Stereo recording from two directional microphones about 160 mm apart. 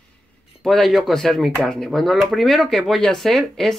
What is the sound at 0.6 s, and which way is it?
Speech, centre (ahead or behind).